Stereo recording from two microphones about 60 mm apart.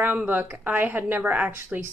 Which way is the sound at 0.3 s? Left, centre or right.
Right.